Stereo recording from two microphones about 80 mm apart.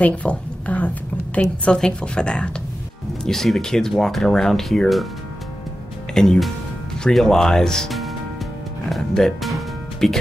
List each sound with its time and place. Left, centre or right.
0.0 s a sound: centre
1.4 s a woman's voice: centre
6.1 s speech: centre